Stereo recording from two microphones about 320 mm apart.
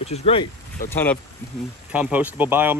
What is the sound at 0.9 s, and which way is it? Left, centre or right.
Speech, centre.